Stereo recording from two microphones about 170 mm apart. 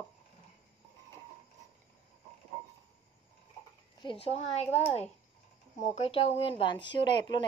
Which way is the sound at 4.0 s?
30° left (ahead or behind).